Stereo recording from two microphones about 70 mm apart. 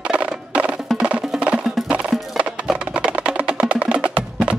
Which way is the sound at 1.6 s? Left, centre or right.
Centre.